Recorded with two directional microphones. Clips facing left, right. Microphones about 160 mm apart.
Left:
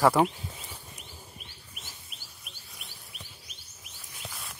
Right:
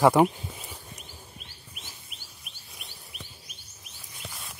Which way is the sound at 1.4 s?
5° left (ahead or behind).